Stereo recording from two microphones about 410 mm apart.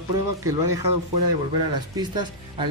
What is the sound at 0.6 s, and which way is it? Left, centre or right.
Speech, right.